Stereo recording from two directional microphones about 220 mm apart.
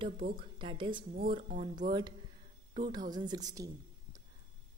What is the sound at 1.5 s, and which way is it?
Speech, 35° right (ahead or behind).